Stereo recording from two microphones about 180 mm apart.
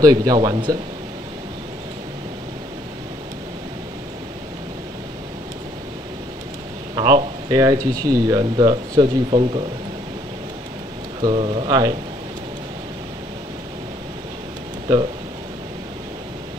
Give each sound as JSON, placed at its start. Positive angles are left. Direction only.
{"t": 0.0, "sound": "speech", "side_deg": -20}
{"t": 7.0, "sound": "speech", "side_deg": -25}
{"t": 11.1, "sound": "speech", "side_deg": -25}